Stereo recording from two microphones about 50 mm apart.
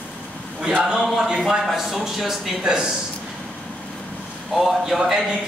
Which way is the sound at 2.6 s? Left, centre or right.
Centre.